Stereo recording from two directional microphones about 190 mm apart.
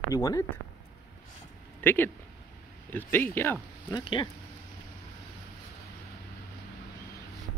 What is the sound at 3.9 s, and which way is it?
Speech, 25° left (ahead or behind).